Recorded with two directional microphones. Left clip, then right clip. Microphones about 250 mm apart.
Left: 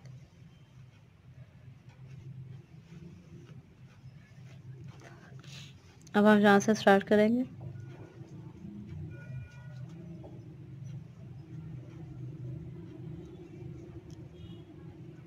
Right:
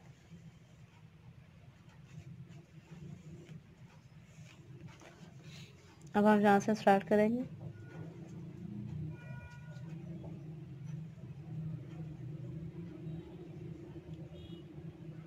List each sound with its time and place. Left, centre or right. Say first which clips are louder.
6.0 s a woman's voice: left 4 dB; centre